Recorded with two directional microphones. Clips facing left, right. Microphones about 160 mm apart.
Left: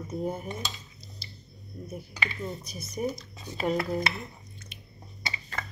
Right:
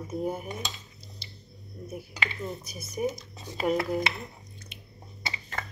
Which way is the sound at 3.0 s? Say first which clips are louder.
Right 2 dB; 25° right (ahead or behind).